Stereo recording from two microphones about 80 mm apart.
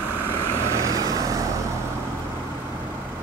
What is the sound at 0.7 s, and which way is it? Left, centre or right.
Vehicle, right.